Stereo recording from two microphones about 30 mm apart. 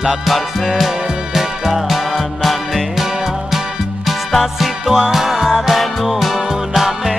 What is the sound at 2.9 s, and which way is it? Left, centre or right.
Music, centre.